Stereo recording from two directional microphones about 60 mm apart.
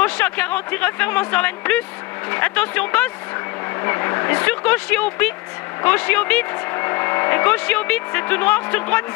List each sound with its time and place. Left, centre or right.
0.0 s speech: left
3.8 s speech: left
4.5 s speech: left
6.7 s speech: left